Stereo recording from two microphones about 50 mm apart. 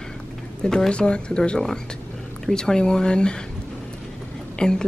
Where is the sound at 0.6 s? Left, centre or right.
Centre.